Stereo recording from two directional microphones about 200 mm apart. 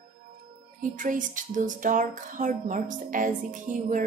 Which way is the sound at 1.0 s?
40° right (ahead or behind).